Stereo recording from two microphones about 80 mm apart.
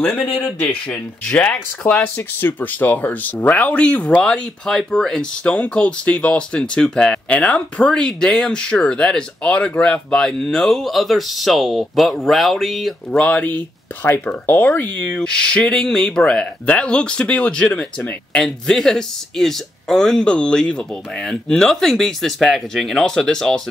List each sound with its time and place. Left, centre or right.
0.0 s speech: left
0.3 s speech: centre
0.6 s speech: left; by 13.2 s centre
13.2 s speech: centre